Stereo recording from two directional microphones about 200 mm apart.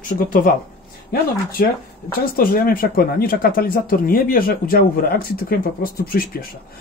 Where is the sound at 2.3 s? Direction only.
45° left (ahead or behind).